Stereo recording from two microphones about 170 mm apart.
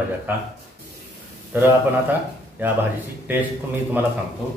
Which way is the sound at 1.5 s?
10° right (ahead or behind).